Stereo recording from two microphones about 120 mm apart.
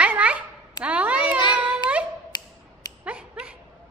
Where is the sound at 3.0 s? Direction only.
10° right (ahead or behind).